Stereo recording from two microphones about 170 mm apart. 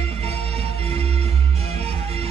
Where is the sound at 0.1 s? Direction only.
35° right (ahead or behind).